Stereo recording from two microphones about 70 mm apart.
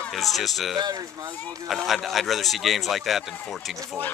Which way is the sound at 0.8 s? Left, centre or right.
Right.